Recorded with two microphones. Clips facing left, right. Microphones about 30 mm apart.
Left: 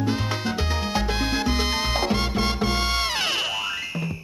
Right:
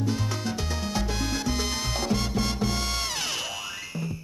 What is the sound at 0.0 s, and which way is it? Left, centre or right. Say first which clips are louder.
Music: left 4 dB; left.